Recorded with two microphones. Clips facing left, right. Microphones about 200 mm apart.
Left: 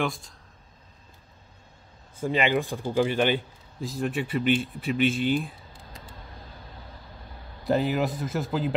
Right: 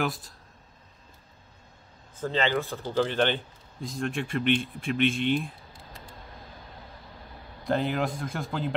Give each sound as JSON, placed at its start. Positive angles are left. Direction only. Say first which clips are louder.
{"t": 0.0, "sound": "a man's voice", "louder": "left 1 dB", "side_deg": -5}
{"t": 2.1, "sound": "a man's voice", "louder": "left 2 dB", "side_deg": 10}
{"t": 7.6, "sound": "a man's voice", "louder": "left 3 dB", "side_deg": 5}